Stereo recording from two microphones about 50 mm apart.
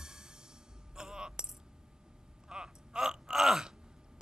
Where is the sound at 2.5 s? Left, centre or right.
Centre.